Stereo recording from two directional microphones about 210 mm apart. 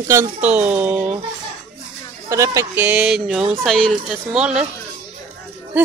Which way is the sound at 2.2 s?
15° right (ahead or behind).